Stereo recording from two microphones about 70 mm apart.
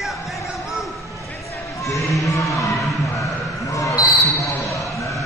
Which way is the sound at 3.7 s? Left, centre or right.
Left.